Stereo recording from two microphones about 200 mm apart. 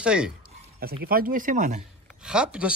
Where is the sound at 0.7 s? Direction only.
50° right (ahead or behind).